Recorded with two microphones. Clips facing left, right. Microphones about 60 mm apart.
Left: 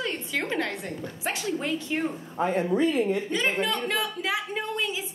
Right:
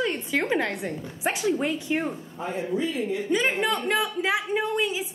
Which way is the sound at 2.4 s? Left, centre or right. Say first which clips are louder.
Left 4 dB; left.